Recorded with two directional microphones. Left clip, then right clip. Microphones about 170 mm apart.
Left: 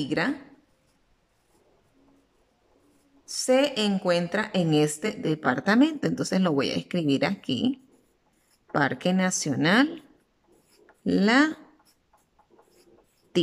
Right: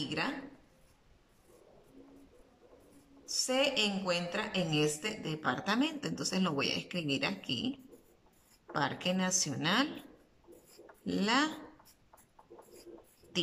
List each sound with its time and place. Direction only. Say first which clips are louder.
0.0 s a woman's voice: left 9 dB; 50° left (ahead or behind)
3.3 s a woman's voice: left 8 dB; 50° left (ahead or behind)
8.7 s a woman's voice: left 8 dB; 50° left (ahead or behind)
11.1 s a woman's voice: left 9 dB; 50° left (ahead or behind)